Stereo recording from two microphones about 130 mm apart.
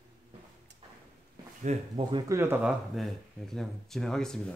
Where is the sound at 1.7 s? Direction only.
60° right (ahead or behind).